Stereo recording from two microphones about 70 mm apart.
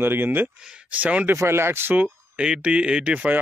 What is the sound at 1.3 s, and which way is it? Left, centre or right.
Speech, right.